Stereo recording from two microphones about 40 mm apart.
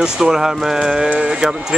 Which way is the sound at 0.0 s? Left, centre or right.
Centre.